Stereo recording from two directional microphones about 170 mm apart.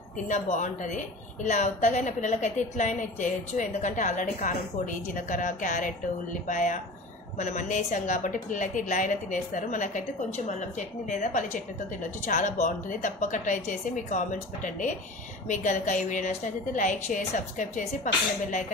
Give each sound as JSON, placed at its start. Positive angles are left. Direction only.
{"t": 0.3, "sound": "a woman's voice", "side_deg": 45}